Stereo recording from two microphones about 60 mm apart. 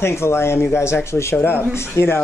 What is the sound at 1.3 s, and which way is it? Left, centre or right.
Speech, left.